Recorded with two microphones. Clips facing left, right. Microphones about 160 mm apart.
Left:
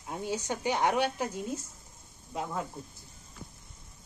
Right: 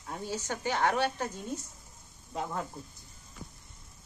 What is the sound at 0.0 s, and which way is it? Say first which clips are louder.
A woman's voice: left 2 dB; 20° left (ahead or behind).